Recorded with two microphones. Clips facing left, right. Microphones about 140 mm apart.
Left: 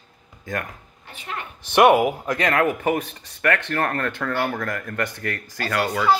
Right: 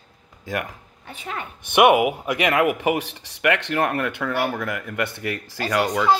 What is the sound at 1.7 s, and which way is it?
Speech, 10° right (ahead or behind).